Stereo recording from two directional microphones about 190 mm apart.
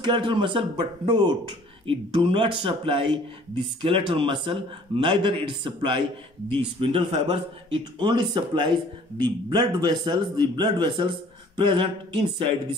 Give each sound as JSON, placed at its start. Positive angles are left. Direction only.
{"t": 0.0, "sound": "a man's voice", "side_deg": -25}